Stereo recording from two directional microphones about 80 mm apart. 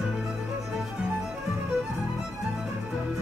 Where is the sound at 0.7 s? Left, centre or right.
Centre.